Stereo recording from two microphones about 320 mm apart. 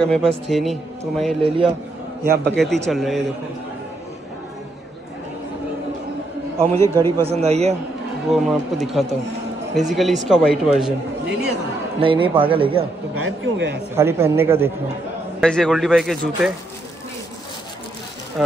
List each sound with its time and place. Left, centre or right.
0.0 s a man's voice: centre
2.2 s a man's voice: right
2.5 s a man's voice: centre
6.9 s speech: centre
7.4 s a man's voice: centre
8.3 s a man's voice: centre
12.0 s speech: centre
13.1 s speech: right
13.9 s a man's voice: centre